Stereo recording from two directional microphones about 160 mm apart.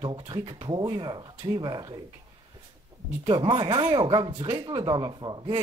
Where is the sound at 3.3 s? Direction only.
25° right (ahead or behind).